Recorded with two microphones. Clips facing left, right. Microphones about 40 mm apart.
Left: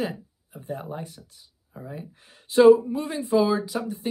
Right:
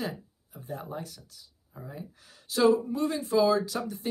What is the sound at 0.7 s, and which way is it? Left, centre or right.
Speech, left.